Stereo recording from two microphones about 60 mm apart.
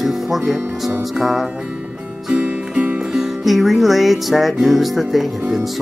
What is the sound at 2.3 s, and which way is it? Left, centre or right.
Music, centre.